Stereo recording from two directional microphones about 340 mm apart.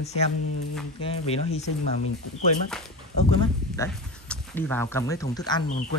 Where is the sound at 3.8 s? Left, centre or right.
Centre.